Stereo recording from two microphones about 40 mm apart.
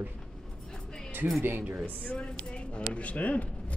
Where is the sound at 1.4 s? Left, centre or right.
Right.